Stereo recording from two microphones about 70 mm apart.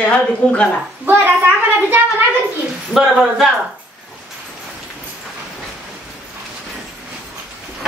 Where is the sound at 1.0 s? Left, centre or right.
Right.